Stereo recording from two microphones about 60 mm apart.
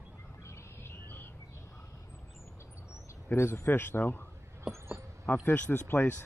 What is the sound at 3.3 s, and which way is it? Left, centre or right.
Speech, left.